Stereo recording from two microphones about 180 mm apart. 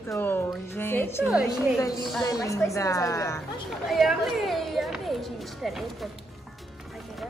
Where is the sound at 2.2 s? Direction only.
20° left (ahead or behind).